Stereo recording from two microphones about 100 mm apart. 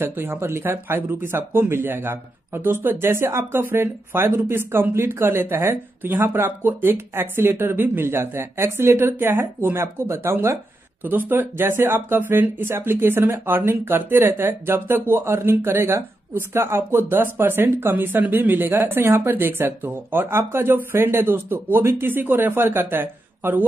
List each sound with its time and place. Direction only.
0.0 s speech: 20° right (ahead or behind)